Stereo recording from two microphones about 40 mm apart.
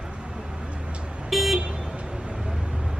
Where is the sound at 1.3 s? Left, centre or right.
Centre.